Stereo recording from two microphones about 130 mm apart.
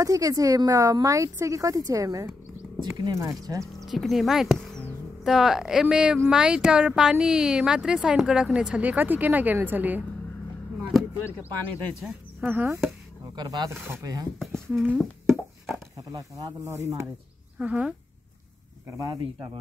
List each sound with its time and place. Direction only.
0.0 s speech: 25° right (ahead or behind)
3.8 s speech: centre (ahead or behind)
12.0 s a sound: centre (ahead or behind)
12.4 s speech: 15° right (ahead or behind)
13.2 s snake: 30° right (ahead or behind)
13.7 s speech: 25° right (ahead or behind)
14.9 s beatboxing: centre (ahead or behind)
16.1 s speech: 25° right (ahead or behind)
17.6 s speech: 10° right (ahead or behind)
18.9 s speech: 25° right (ahead or behind)